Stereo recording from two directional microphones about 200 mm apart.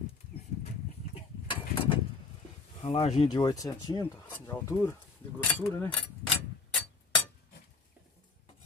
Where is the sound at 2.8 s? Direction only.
30° left (ahead or behind); by 6.3 s 5° left (ahead or behind).